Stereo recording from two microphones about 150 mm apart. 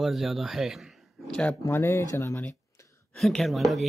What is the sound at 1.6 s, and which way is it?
Speech, 15° left (ahead or behind).